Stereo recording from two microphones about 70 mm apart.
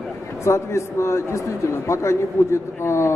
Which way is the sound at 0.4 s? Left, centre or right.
Left.